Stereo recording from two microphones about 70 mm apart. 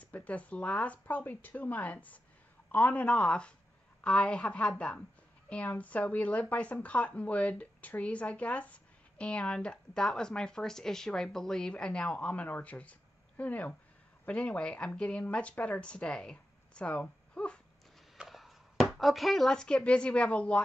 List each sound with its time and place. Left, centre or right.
0.0 s a woman's voice: left
18.1 s speech: centre